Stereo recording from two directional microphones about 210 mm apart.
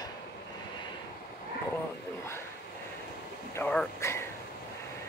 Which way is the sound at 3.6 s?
10° left (ahead or behind).